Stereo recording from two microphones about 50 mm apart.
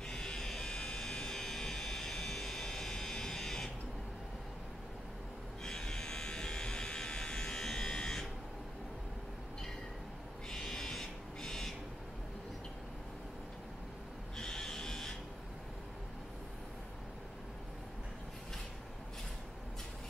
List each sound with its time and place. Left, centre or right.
0.1 s buzzer: centre
5.6 s electric shaver: centre
10.5 s a sound: centre
14.3 s electric shaver: centre